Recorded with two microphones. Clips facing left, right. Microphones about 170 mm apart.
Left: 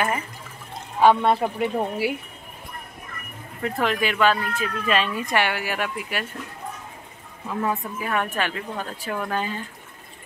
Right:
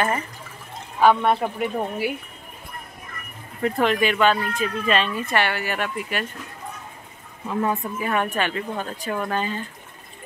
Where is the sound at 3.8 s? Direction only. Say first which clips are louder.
Right 2 dB; centre (ahead or behind).